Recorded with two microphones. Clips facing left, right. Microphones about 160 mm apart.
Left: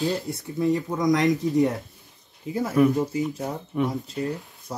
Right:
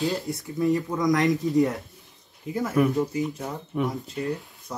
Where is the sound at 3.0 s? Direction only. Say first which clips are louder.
Left 1 dB; 20° left (ahead or behind).